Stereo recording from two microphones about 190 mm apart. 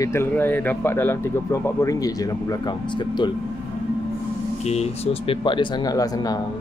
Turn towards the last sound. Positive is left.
turn(degrees=20)  # may be behind; listen again after turning